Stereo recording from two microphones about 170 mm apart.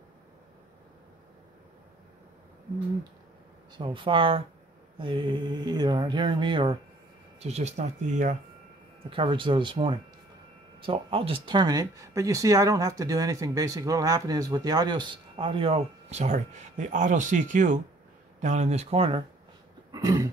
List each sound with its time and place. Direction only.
3.7 s speech: 30° right (ahead or behind)
7.4 s speech: 40° right (ahead or behind)
9.1 s speech: 30° right (ahead or behind)
19.9 s a sound: 20° right (ahead or behind)